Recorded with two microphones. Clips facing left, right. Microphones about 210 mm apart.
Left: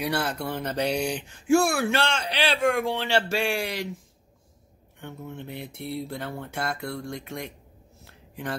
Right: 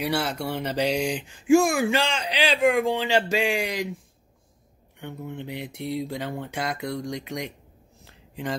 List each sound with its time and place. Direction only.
0.0 s speech: 10° right (ahead or behind)
5.0 s speech: 15° right (ahead or behind)